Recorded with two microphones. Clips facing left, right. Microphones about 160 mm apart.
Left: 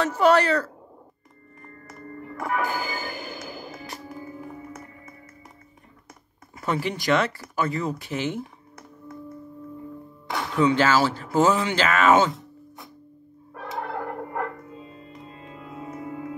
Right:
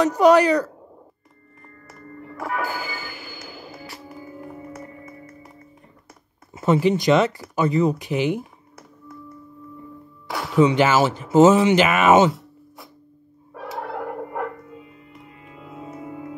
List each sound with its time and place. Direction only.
0.0 s speech: 15° right (ahead or behind)
2.3 s music: centre (ahead or behind)
3.1 s music: 40° left (ahead or behind)
3.7 s music: centre (ahead or behind)
6.5 s speech: 20° right (ahead or behind)
10.5 s speech: 20° right (ahead or behind)
12.3 s a sound: centre (ahead or behind)
13.5 s music: centre (ahead or behind)
15.6 s music: 5° right (ahead or behind)